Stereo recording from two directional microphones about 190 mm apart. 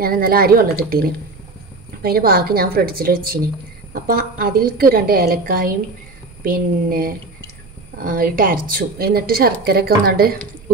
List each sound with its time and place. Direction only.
0.0 s a woman's voice: 50° right (ahead or behind)